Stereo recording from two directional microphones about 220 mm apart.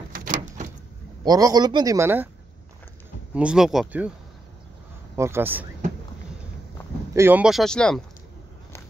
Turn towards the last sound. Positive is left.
turn(degrees=5)  # may be behind; listen again after turning